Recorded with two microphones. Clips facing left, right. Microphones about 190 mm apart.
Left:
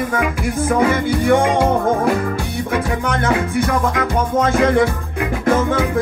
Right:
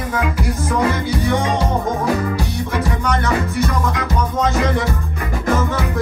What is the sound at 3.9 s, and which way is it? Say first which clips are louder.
Music: left 3 dB; 55° left (ahead or behind).